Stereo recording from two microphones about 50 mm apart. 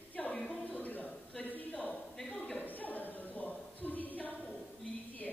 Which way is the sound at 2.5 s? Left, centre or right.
Left.